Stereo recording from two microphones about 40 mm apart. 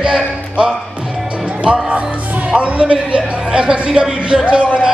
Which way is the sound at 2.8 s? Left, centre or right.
Right.